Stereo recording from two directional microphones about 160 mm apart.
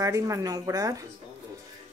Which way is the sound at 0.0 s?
20° right (ahead or behind).